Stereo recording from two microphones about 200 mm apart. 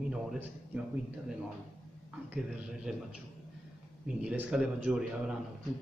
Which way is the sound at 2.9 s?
5° right (ahead or behind).